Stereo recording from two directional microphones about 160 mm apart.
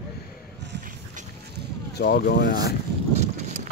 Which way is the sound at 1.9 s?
90° left.